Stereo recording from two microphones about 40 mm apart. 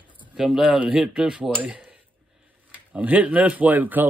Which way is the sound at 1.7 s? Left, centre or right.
Right.